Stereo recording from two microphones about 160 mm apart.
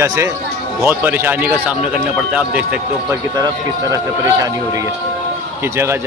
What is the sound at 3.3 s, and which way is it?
Speech, 25° right (ahead or behind).